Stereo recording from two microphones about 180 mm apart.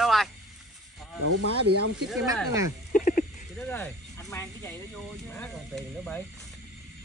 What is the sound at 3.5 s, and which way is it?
Snake, 10° left (ahead or behind).